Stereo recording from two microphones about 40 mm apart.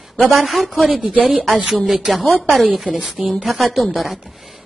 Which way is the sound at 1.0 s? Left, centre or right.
Right.